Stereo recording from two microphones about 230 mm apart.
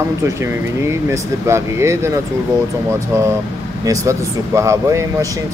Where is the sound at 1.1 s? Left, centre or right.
Centre.